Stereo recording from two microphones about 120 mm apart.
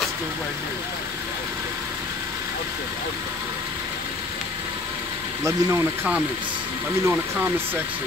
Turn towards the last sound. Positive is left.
turn(degrees=-15)  # may be behind; listen again after turning